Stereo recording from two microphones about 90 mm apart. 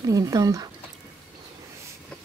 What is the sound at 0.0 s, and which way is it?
Speech, 40° right (ahead or behind).